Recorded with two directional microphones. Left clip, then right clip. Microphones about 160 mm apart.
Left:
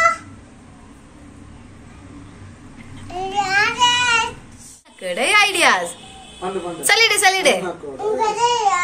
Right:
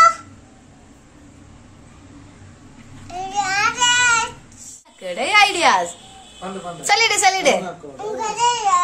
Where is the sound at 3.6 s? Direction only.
35° right (ahead or behind).